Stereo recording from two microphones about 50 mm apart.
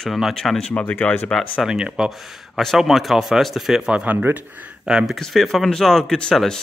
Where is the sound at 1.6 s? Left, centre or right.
Centre.